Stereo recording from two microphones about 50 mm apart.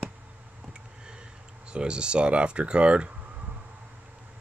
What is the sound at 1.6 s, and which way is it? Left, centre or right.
Speech, centre.